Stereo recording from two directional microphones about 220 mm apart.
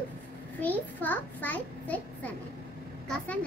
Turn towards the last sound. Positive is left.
turn(degrees=5)  # may be behind; listen again after turning